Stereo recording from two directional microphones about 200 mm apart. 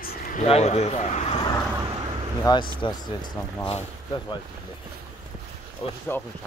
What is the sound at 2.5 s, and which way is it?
Speech, 20° left (ahead or behind).